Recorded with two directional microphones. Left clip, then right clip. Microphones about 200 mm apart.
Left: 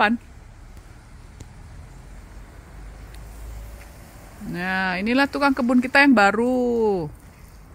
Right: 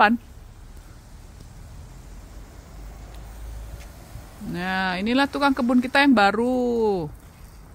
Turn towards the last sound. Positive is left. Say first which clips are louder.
# left 1 dB
turn(degrees=5)  # may be behind; listen again after turning